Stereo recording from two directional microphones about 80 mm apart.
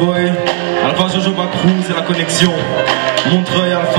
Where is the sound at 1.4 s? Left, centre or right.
Centre.